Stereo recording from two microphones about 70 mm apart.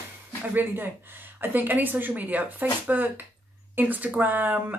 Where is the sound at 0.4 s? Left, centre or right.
Right.